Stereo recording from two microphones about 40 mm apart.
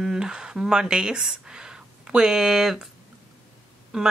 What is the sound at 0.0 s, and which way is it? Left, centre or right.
Speech, centre.